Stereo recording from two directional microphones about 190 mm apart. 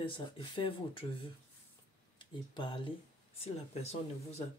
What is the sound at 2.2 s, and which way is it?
Speech, 25° left (ahead or behind).